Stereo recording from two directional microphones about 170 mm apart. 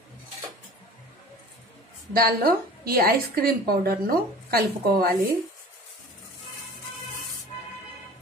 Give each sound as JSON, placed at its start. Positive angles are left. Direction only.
{"t": 2.1, "sound": "a woman's voice", "side_deg": -60}